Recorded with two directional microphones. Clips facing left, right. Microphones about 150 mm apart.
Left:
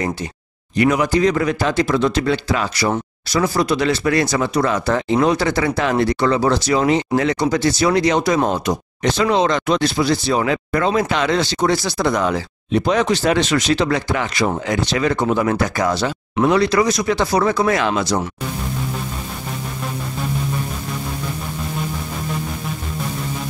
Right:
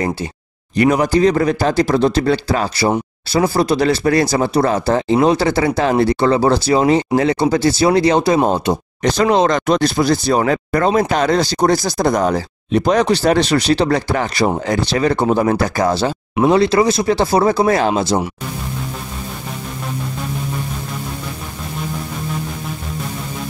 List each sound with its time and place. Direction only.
0.7 s speech: 35° right (ahead or behind)
9.0 s speech: 40° right (ahead or behind)